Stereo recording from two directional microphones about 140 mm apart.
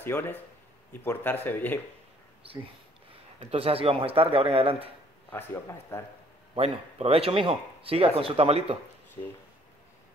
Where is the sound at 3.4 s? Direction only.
45° right (ahead or behind).